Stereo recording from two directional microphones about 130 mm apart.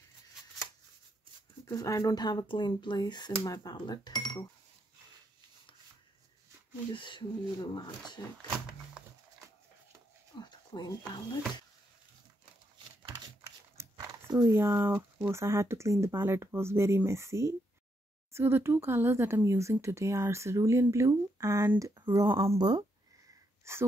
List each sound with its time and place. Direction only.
1.7 s speech: 25° left (ahead or behind)
6.9 s speech: 40° left (ahead or behind)
10.3 s a sound: 35° left (ahead or behind)
13.8 s a sound: 20° right (ahead or behind)
14.4 s speech: 25° right (ahead or behind)
15.0 s speech: 10° right (ahead or behind)
22.0 s speech: 35° right (ahead or behind)
23.6 s speech: 20° right (ahead or behind)